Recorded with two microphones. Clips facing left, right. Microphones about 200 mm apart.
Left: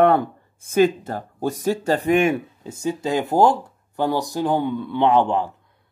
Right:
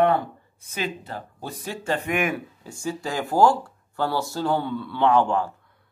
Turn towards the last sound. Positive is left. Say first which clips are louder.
# left 2 dB
turn(degrees=20)  # may be behind; listen again after turning